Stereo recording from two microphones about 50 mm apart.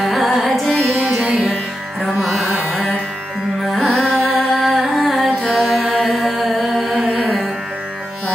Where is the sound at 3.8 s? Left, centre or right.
Centre.